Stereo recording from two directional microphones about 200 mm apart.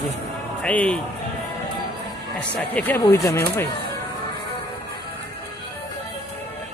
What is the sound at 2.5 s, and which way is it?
Speech, 10° left (ahead or behind).